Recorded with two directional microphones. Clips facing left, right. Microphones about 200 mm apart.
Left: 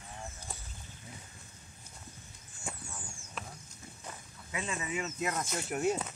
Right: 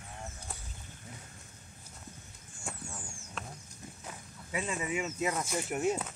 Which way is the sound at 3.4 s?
5° left (ahead or behind).